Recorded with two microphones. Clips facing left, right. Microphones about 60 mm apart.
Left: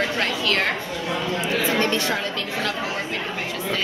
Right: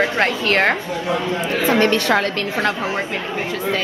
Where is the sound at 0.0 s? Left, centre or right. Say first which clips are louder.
Right 5 dB; right.